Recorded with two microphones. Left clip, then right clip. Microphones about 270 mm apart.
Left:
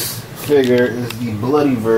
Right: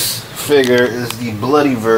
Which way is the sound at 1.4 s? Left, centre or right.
Centre.